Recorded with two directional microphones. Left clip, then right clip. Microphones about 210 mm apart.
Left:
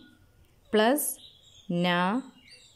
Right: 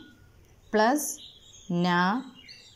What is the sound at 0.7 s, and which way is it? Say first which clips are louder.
Speech: even; 20° left (ahead or behind).